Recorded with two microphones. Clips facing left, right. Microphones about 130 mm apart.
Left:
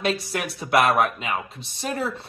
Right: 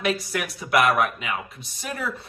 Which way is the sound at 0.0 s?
30° left (ahead or behind).